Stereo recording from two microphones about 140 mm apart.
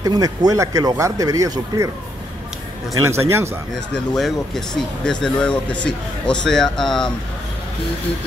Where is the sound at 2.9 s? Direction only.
20° right (ahead or behind).